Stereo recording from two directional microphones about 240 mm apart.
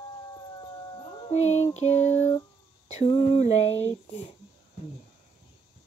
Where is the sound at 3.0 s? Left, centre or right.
Left.